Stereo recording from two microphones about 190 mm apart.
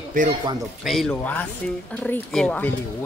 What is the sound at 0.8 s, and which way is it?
A man's voice, centre (ahead or behind).